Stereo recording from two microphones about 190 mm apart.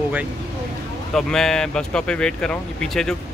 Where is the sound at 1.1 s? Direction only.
Centre (ahead or behind).